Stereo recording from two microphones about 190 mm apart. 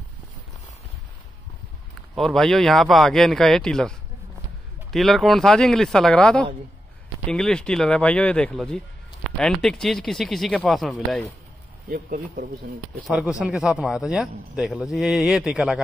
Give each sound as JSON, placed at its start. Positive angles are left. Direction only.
{"t": 2.1, "sound": "a man's voice", "side_deg": 0}
{"t": 4.9, "sound": "a man's voice", "side_deg": 0}
{"t": 11.9, "sound": "speech", "side_deg": -50}
{"t": 13.0, "sound": "a man's voice", "side_deg": -5}